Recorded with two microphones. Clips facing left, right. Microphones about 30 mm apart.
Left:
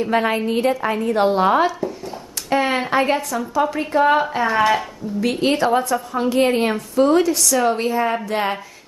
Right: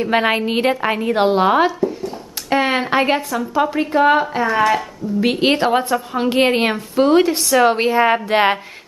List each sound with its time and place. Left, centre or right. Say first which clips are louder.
0.1 s a woman's voice: right 3 dB; right; by 1.7 s centre
1.8 s a sound: right 5 dB; centre
2.5 s a woman's voice: right 2 dB; right
4.2 s speech: right 1 dB; centre
5.2 s a woman's voice: right 2 dB; right